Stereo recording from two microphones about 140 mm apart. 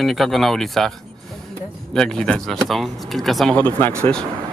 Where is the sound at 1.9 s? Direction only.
5° left (ahead or behind).